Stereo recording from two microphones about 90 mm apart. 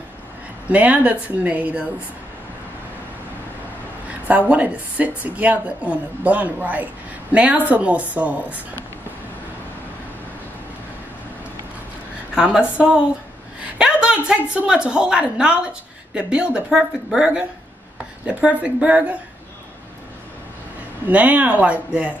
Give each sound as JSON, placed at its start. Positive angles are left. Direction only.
{"t": 0.7, "sound": "a woman's voice", "side_deg": -15}
{"t": 4.3, "sound": "a woman's voice", "side_deg": -15}
{"t": 12.4, "sound": "a woman's voice", "side_deg": -10}
{"t": 21.1, "sound": "a woman's voice", "side_deg": -15}